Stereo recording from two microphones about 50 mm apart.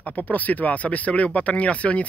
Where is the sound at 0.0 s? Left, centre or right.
Left.